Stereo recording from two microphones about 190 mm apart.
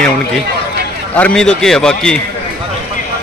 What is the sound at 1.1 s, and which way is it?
A man's voice, 5° left (ahead or behind).